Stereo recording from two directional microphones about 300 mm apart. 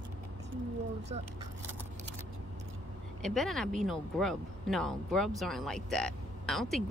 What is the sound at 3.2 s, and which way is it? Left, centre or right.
Speech, centre.